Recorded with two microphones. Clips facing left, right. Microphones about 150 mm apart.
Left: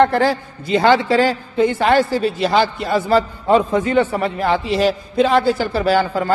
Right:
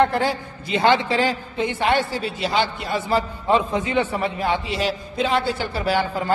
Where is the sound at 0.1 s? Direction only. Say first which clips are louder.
Left 5 dB; 40° left (ahead or behind).